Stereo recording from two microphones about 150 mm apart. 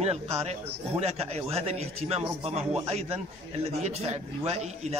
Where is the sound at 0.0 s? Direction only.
45° right (ahead or behind).